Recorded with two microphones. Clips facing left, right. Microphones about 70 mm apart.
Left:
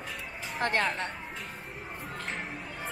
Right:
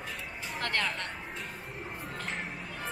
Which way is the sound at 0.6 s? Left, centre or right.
Left.